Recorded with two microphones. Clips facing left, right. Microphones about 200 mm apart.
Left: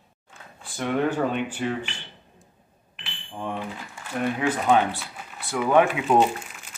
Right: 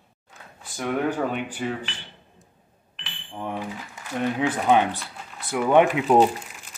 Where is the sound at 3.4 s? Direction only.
15° right (ahead or behind).